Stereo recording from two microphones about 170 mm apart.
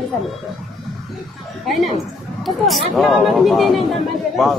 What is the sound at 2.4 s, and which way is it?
A man's voice, centre (ahead or behind).